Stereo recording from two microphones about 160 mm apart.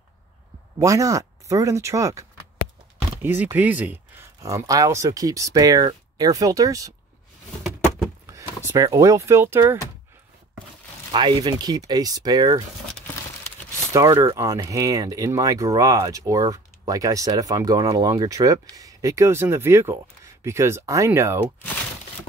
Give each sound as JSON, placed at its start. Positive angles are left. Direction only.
{"t": 0.7, "sound": "speech", "side_deg": -20}
{"t": 8.6, "sound": "speech", "side_deg": -20}
{"t": 11.1, "sound": "speech", "side_deg": -25}
{"t": 13.9, "sound": "speech", "side_deg": -20}